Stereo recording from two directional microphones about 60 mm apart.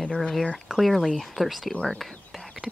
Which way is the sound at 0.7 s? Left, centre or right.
Centre.